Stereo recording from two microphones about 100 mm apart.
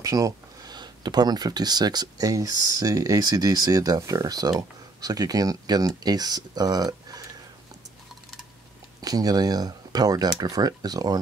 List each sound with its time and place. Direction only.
0.0 s speech: 35° right (ahead or behind)
9.0 s speech: 40° right (ahead or behind)